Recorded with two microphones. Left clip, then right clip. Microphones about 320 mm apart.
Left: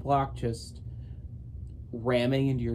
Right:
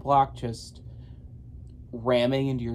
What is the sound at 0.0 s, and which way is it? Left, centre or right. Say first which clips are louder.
Speech: right 5 dB; centre.